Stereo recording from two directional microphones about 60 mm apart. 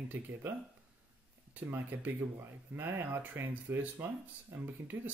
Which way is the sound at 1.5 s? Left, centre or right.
Right.